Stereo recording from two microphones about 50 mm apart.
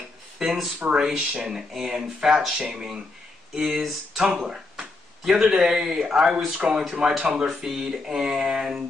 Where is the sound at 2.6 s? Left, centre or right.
Centre.